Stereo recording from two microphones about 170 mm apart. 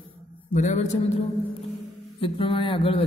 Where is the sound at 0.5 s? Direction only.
45° left (ahead or behind).